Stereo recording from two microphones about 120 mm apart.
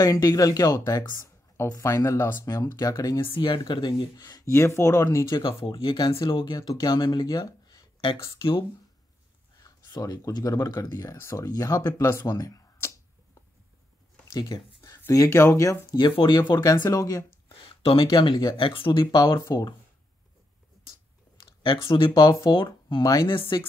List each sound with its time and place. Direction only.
0.0 s speech: 30° left (ahead or behind)
2.5 s speech: 30° left (ahead or behind)
3.2 s speech: 45° left (ahead or behind); by 5.4 s 25° left (ahead or behind)
5.4 s speech: 45° left (ahead or behind)
8.4 s speech: 45° left (ahead or behind)
9.6 s speech: 30° left (ahead or behind)
14.2 s speech: 30° left (ahead or behind)
17.8 s speech: 45° left (ahead or behind)
19.2 s speech: 30° left (ahead or behind)
21.6 s speech: 45° left (ahead or behind)